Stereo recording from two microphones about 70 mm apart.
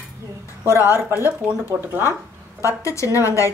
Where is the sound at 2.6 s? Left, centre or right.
Left.